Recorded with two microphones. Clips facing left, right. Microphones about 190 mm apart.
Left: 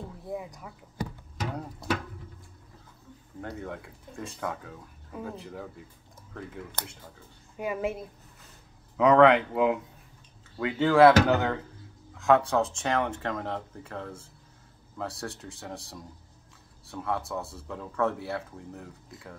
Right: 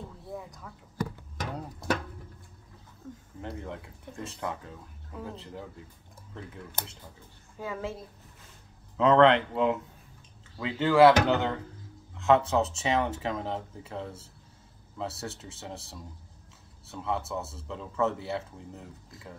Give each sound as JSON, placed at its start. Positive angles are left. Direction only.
{"t": 3.4, "sound": "speech", "side_deg": 0}
{"t": 7.5, "sound": "a woman's voice", "side_deg": 15}
{"t": 8.9, "sound": "speech", "side_deg": 5}